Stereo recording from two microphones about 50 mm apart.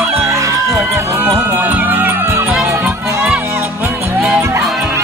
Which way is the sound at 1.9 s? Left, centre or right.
Right.